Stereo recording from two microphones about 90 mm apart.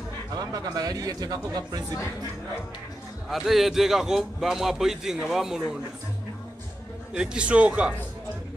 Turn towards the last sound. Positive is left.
turn(degrees=-15)  # may be behind; listen again after turning